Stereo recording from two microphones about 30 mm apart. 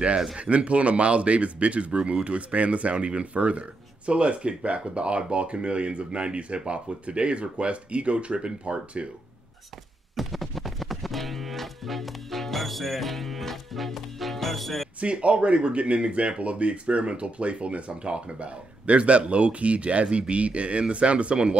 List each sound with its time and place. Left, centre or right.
0.4 s speech: right
10.1 s music: centre
15.0 s speech: right